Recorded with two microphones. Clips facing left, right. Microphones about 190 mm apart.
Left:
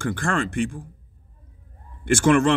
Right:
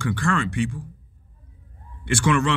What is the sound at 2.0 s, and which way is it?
Speech, 45° left (ahead or behind).